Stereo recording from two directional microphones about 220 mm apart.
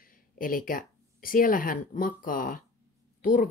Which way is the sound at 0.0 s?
40° left (ahead or behind).